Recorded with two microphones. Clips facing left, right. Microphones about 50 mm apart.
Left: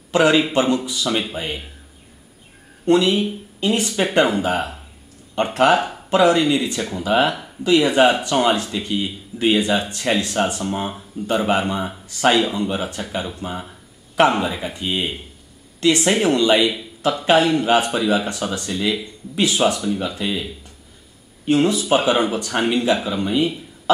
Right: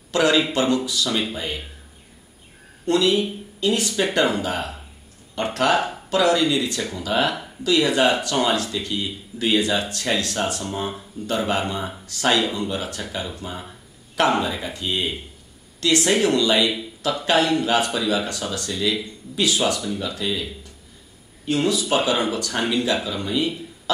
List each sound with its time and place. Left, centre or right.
0.1 s speech: left
2.8 s speech: left
5.3 s speech: left
21.5 s speech: left